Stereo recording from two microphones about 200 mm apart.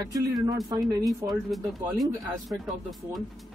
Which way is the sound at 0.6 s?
20° right (ahead or behind).